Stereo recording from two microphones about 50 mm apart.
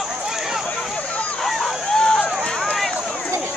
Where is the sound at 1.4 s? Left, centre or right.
Centre.